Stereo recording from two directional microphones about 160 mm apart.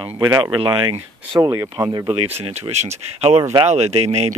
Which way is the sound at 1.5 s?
20° right (ahead or behind).